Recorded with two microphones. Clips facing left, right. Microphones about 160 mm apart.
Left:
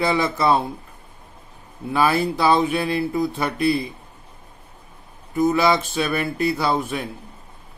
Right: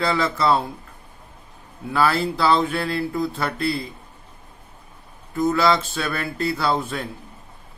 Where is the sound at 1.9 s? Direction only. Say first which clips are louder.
Left 1 dB; 20° left (ahead or behind).